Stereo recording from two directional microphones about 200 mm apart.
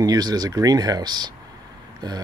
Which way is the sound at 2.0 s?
20° right (ahead or behind).